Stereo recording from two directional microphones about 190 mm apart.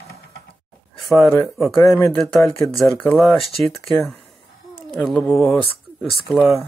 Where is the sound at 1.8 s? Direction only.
15° left (ahead or behind).